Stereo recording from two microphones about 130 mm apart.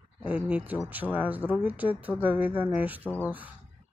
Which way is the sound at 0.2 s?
10° right (ahead or behind).